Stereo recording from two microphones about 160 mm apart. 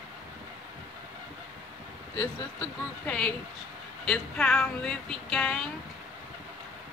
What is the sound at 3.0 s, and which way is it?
Speech, 5° left (ahead or behind).